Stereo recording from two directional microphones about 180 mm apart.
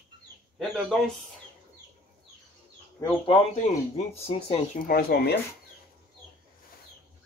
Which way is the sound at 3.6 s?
35° left (ahead or behind).